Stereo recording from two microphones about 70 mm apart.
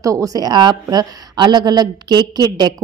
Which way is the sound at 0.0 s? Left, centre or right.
Right.